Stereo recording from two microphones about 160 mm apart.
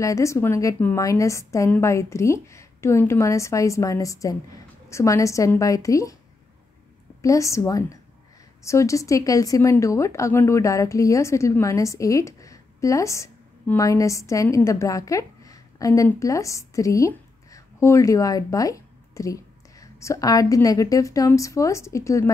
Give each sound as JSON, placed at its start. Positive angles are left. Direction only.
{"t": 0.0, "sound": "a woman's voice", "side_deg": 20}
{"t": 7.2, "sound": "a woman's voice", "side_deg": 20}